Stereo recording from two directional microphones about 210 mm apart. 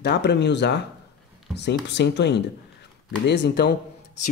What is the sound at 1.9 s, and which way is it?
Speech, 55° left (ahead or behind).